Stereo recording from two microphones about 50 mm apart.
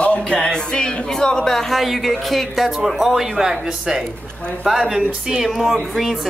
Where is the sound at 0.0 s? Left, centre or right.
Left.